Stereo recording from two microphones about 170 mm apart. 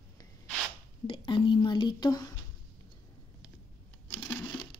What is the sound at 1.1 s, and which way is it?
A woman's voice, 25° left (ahead or behind).